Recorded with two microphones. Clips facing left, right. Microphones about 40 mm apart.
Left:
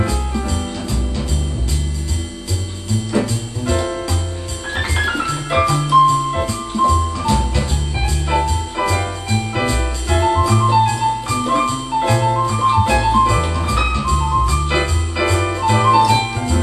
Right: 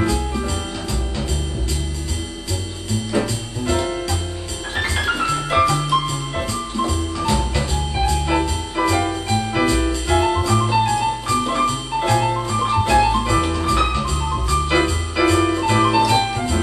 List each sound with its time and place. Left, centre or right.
0.0 s music: centre
3.1 s music: centre
5.8 s jingle bell: centre
12.4 s music: centre
14.1 s jingle bell: centre
15.3 s music: centre